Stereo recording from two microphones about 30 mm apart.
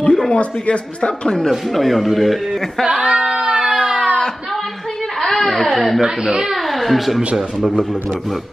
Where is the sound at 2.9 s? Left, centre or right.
Right.